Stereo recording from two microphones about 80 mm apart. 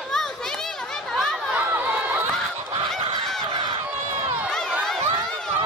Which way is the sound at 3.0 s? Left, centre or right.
Right.